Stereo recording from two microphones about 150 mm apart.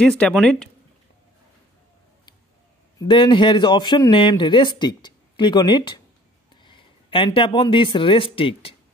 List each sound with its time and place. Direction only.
0.0 s speech: 5° left (ahead or behind)
3.0 s speech: 35° left (ahead or behind)
6.5 s a sound: 30° left (ahead or behind)
7.2 s speech: 30° left (ahead or behind)